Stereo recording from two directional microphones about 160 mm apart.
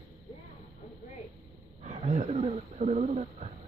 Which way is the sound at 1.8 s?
45° right (ahead or behind).